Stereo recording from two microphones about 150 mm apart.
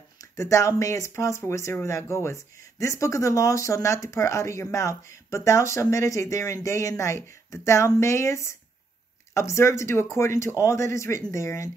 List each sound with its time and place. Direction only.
0.2 s speech: 20° left (ahead or behind)